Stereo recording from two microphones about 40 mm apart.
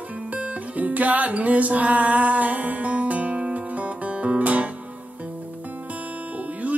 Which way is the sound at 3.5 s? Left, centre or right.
Right.